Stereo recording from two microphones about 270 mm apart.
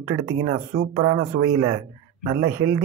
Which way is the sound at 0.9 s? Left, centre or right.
Centre.